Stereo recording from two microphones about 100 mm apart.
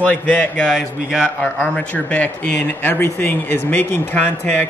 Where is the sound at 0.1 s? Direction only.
15° left (ahead or behind).